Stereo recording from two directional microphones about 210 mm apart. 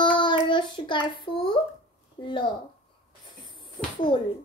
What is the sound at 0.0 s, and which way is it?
Child singing, 20° left (ahead or behind).